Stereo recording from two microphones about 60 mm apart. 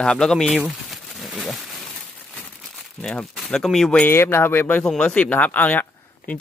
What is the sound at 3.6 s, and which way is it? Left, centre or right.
Speech, centre.